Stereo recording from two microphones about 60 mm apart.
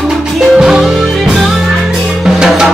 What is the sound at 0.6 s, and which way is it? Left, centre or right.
Music, centre.